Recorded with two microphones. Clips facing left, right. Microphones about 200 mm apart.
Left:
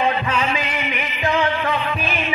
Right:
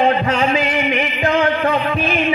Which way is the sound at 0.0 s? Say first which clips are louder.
Right 5 dB; 35° right (ahead or behind).